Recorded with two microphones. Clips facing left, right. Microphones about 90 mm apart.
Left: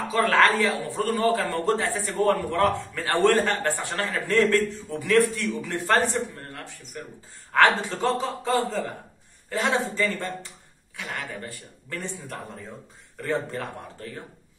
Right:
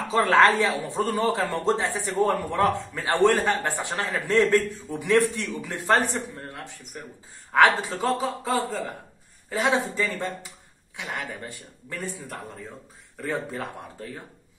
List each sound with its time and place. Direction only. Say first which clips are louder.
0.1 s a man's voice: right 2 dB; 20° right (ahead or behind); by 8.8 s centre (ahead or behind)
9.5 s speech: right 1 dB; 15° right (ahead or behind)
13.2 s speech: left 2 dB; 10° right (ahead or behind)